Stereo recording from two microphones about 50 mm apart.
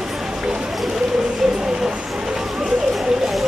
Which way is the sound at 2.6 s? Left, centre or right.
Centre.